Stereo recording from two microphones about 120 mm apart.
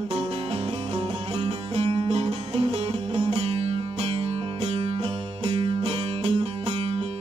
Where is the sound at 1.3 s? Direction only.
55° right (ahead or behind).